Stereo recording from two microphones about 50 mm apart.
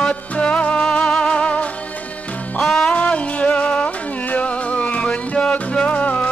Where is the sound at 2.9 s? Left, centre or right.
Left.